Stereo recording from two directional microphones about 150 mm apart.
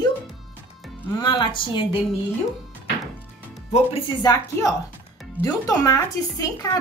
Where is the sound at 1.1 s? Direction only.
30° left (ahead or behind).